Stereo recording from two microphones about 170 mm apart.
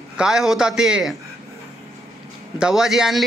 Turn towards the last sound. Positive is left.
turn(degrees=0)  # may be behind; listen again after turning